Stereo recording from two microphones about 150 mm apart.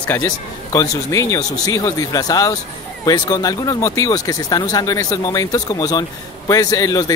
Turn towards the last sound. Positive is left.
turn(degrees=25)  # may be behind; listen again after turning